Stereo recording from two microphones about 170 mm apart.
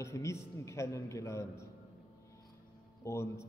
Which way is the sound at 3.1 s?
15° left (ahead or behind).